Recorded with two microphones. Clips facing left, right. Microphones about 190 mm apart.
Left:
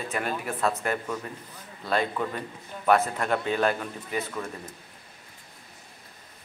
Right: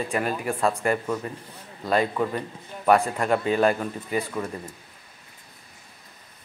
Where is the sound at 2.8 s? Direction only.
Centre (ahead or behind).